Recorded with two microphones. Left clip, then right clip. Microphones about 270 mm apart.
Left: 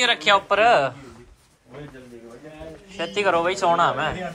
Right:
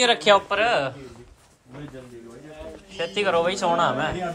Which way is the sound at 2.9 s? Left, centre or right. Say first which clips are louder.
Left 1 dB; centre.